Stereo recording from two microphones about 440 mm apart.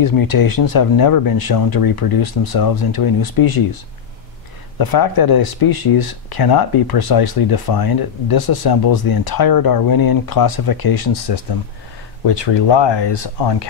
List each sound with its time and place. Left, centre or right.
0.0 s speech: left
4.7 s speech: left
12.3 s speech: left